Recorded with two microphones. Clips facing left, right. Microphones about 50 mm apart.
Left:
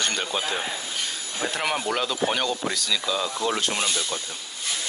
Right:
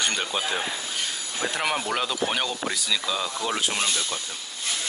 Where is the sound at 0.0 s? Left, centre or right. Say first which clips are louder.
Even; centre.